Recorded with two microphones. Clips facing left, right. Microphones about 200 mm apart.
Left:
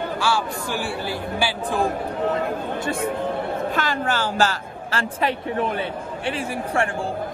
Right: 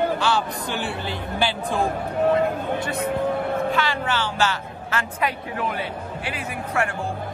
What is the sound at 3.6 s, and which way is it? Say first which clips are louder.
A woman's voice: even; 45° left (ahead or behind).